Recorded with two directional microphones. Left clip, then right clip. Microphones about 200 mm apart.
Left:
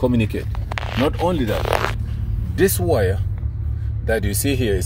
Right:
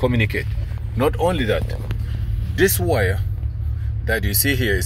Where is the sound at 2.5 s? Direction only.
20° left (ahead or behind).